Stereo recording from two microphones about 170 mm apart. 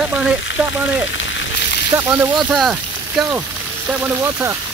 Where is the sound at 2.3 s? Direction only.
Centre (ahead or behind); by 4.5 s 15° right (ahead or behind).